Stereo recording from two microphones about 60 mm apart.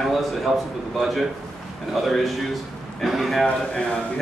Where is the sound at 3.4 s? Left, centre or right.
Centre.